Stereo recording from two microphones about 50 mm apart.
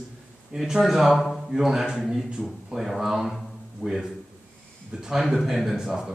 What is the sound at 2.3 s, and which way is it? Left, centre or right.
Speech, centre.